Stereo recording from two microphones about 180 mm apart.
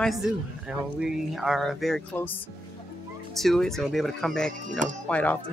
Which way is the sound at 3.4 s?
Centre (ahead or behind).